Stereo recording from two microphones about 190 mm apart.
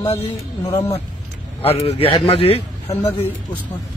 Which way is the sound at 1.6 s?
30° left (ahead or behind).